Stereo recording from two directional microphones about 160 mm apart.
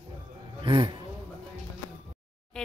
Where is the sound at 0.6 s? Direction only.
30° right (ahead or behind).